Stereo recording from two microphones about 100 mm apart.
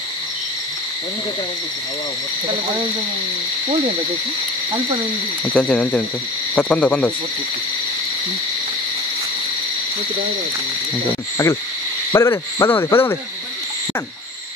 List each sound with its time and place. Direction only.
5.4 s speech: 10° left (ahead or behind)
12.1 s speech: 30° left (ahead or behind)